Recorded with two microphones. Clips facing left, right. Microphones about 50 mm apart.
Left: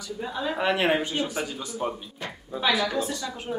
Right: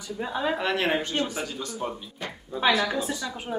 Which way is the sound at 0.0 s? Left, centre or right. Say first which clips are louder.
Right 2 dB; right.